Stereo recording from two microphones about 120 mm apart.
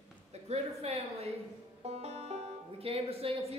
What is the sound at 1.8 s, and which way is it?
Banjo, 65° right (ahead or behind).